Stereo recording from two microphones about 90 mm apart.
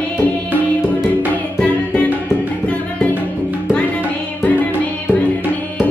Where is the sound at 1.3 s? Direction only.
15° left (ahead or behind).